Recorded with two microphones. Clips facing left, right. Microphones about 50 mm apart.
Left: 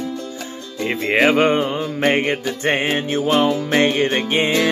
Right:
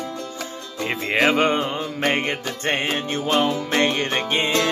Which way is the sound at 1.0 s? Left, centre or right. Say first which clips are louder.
Left 4 dB; centre.